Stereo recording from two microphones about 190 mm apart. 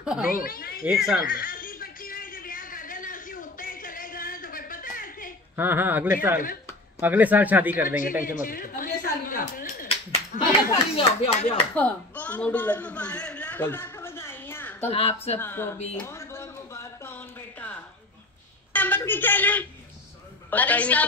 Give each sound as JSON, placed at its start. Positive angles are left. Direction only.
{"t": 0.0, "sound": "speech", "side_deg": -5}
{"t": 0.3, "sound": "speech", "side_deg": 50}
{"t": 0.8, "sound": "speech", "side_deg": -5}
{"t": 1.2, "sound": "a sound", "side_deg": 50}
{"t": 5.6, "sound": "speech", "side_deg": -10}
{"t": 7.8, "sound": "speech", "side_deg": 45}
{"t": 11.7, "sound": "a sound", "side_deg": 5}
{"t": 14.9, "sound": "speech", "side_deg": 30}
{"t": 15.3, "sound": "speech", "side_deg": 10}
{"t": 15.8, "sound": "speech", "side_deg": 30}
{"t": 16.1, "sound": "a sound", "side_deg": 15}
{"t": 20.4, "sound": "a man's voice", "side_deg": 10}